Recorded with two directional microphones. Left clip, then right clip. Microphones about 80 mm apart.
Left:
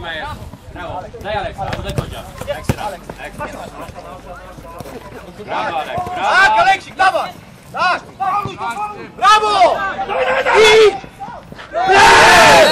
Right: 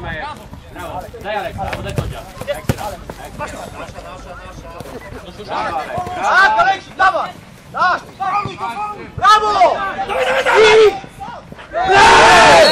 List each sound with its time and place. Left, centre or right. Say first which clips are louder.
0.7 s speech: left 1 dB; left
2.4 s speech: right 1 dB; right
5.5 s a man's voice: left 1 dB; left
8.2 s a sound: left 1 dB; right
9.2 s a man's voice: even; left
10.0 s speech: right 1 dB; right
10.6 s speech: even; left
11.7 s a sound: left 1 dB; centre
12.0 s speech: even; left